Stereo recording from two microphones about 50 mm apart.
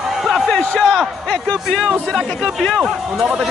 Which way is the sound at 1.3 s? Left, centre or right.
Centre.